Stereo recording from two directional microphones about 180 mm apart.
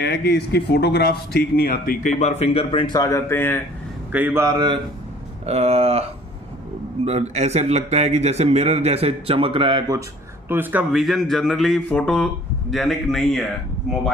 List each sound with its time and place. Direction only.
0.0 s speech: 65° left (ahead or behind); by 3.6 s 15° left (ahead or behind)
4.1 s a man's voice: 10° right (ahead or behind)
5.5 s speech: 35° right (ahead or behind)
7.1 s speech: 35° right (ahead or behind)
10.5 s a man's voice: 10° right (ahead or behind)